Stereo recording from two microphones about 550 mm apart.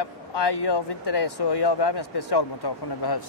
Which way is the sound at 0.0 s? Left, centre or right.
Left.